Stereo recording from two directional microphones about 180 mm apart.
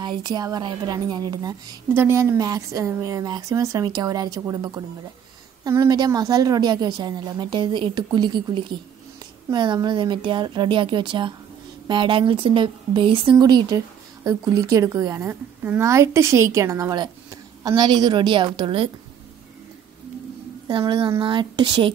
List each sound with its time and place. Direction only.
0.0 s speech: 25° right (ahead or behind)
20.6 s a woman's voice: 25° right (ahead or behind)